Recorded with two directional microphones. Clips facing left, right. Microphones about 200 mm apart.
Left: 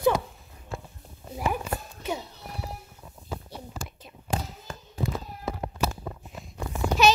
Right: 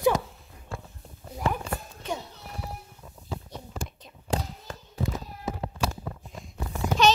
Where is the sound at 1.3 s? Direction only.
10° left (ahead or behind).